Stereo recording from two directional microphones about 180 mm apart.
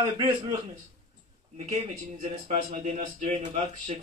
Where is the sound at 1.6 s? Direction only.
40° right (ahead or behind).